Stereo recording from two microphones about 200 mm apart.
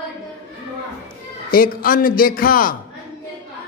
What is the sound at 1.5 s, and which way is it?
A man's voice, 45° left (ahead or behind).